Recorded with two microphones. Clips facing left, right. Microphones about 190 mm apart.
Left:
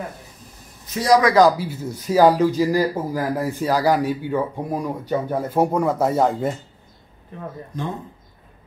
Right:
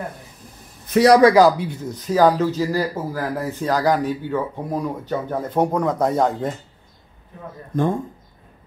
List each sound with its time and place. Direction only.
0.8 s a man's voice: 60° right (ahead or behind)
1.6 s speech: 5° left (ahead or behind)
7.7 s speech: 50° right (ahead or behind)